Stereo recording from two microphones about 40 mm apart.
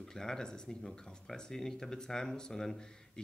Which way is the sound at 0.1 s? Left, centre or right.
Centre.